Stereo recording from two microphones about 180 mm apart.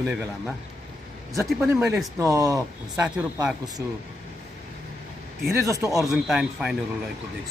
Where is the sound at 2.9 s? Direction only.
5° right (ahead or behind).